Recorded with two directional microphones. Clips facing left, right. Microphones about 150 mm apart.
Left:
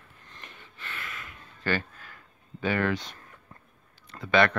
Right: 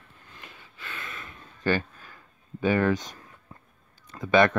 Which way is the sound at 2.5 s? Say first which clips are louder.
Right 4 dB; 20° right (ahead or behind).